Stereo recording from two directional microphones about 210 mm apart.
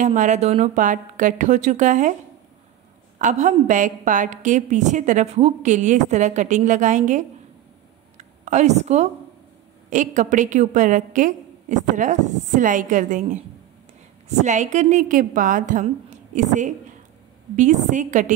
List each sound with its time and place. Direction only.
0.0 s a woman's voice: 35° right (ahead or behind)
3.2 s a woman's voice: 35° right (ahead or behind)
14.4 s a woman's voice: 35° right (ahead or behind)